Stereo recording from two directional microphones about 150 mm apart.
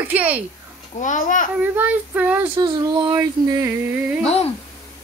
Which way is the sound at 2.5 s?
30° right (ahead or behind).